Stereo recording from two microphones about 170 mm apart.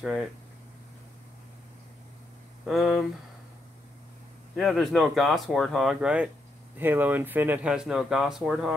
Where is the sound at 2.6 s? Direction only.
Centre (ahead or behind).